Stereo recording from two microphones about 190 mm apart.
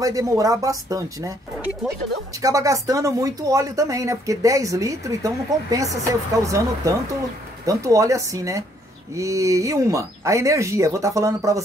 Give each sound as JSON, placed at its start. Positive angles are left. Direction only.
{"t": 0.0, "sound": "speech", "side_deg": -20}
{"t": 2.4, "sound": "speech", "side_deg": -15}